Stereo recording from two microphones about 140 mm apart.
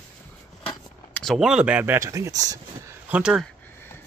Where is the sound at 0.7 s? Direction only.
5° left (ahead or behind); by 2.0 s 10° right (ahead or behind).